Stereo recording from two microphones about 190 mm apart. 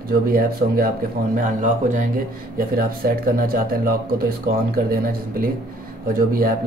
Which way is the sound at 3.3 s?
50° right (ahead or behind).